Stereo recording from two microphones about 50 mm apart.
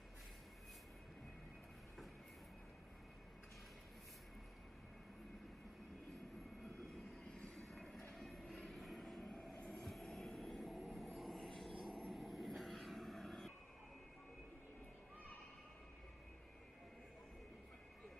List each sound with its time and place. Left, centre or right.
7.2 s vehicle: centre
7.5 s vehicle: centre
9.6 s vehicle: left
9.8 s vehicle: centre